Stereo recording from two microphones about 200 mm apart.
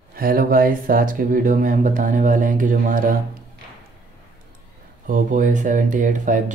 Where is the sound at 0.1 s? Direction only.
45° right (ahead or behind).